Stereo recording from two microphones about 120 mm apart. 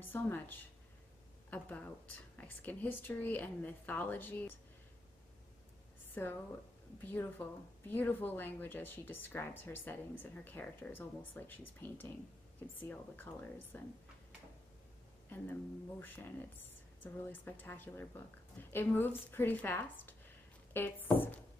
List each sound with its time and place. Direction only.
0.0 s speech: 15° left (ahead or behind)
6.2 s a woman's voice: 20° left (ahead or behind)
15.2 s speech: 15° left (ahead or behind)